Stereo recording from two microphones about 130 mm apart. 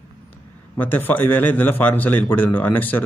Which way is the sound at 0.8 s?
15° left (ahead or behind).